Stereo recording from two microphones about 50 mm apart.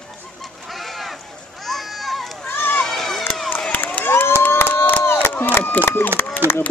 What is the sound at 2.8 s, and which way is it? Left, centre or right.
Run, centre.